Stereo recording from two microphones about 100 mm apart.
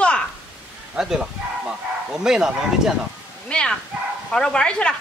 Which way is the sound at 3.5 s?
10° left (ahead or behind).